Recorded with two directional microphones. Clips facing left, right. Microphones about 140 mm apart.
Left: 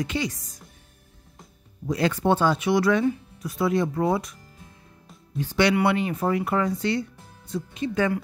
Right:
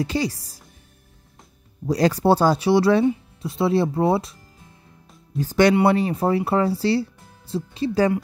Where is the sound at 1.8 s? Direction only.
35° right (ahead or behind).